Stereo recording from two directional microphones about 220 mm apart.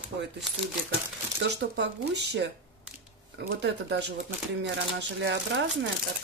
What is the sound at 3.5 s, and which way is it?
Speech, 50° right (ahead or behind).